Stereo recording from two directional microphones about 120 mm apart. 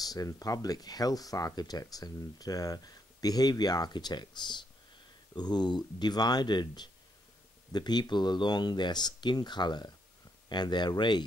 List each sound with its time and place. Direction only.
0.0 s speech: 30° left (ahead or behind)